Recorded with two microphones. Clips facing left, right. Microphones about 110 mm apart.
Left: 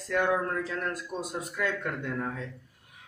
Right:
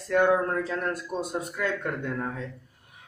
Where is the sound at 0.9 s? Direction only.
Centre (ahead or behind).